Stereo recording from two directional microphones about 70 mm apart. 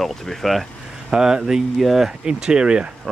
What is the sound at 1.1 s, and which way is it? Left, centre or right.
Speech, centre.